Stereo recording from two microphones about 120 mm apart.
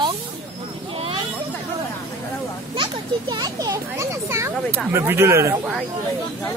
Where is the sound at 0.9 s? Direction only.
55° right (ahead or behind).